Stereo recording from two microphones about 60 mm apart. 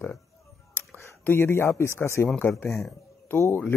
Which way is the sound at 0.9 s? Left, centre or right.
Left.